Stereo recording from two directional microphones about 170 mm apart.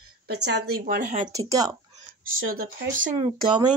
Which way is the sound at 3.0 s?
45° right (ahead or behind).